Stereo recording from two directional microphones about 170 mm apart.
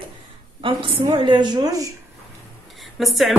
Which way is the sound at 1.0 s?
25° right (ahead or behind).